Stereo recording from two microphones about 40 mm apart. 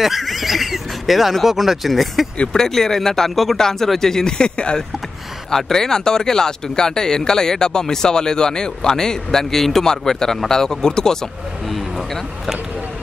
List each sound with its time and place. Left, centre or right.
0.0 s speech: centre
2.5 s speech: centre
5.5 s speech: centre